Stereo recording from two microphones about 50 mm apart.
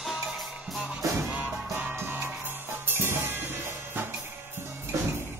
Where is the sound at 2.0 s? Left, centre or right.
Right.